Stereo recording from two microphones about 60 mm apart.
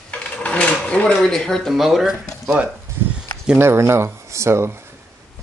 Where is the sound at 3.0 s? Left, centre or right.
Right.